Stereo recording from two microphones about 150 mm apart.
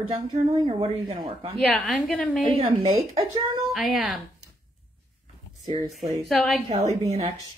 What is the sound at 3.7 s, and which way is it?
Speech, centre (ahead or behind).